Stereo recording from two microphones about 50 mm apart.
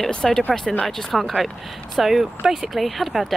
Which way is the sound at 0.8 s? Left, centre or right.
Centre.